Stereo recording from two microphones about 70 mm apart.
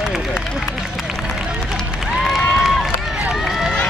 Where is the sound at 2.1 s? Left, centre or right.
Centre.